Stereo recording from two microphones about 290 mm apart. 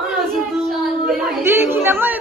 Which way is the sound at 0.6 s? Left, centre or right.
Centre.